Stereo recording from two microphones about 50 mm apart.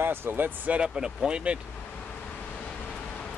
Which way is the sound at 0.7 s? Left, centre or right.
Centre.